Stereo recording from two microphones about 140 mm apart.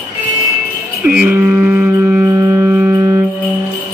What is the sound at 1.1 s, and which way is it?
Music, 15° right (ahead or behind).